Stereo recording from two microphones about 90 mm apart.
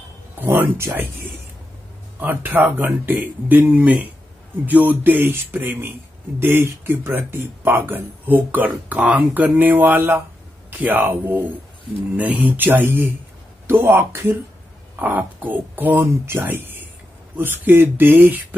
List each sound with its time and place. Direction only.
0.4 s speech: 25° right (ahead or behind)